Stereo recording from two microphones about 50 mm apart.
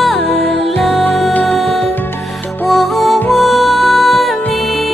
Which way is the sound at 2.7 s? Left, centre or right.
Centre.